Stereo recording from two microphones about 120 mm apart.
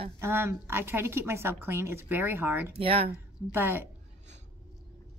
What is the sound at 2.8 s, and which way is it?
Speech, 50° right (ahead or behind).